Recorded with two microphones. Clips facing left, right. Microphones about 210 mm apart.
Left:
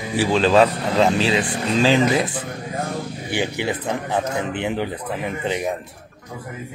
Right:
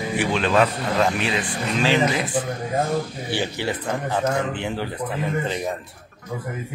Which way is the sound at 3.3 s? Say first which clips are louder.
Left 5 dB; 15° left (ahead or behind).